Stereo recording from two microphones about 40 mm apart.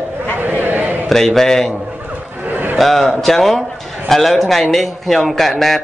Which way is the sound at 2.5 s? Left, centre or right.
Right.